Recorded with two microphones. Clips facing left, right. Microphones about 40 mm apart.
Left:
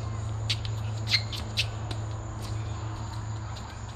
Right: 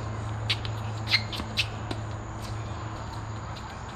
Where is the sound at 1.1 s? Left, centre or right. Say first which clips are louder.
Right 2 dB; centre.